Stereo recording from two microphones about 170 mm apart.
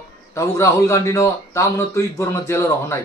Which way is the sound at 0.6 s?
15° left (ahead or behind).